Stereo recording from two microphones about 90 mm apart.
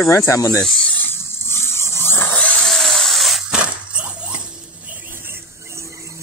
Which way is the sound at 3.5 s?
15° right (ahead or behind).